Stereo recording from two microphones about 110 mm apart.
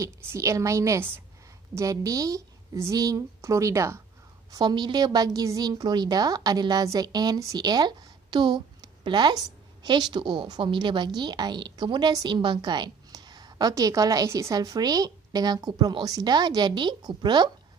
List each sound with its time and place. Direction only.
0.0 s a woman's voice: 25° right (ahead or behind)
1.8 s a woman's voice: 30° right (ahead or behind)
4.5 s a woman's voice: 40° right (ahead or behind)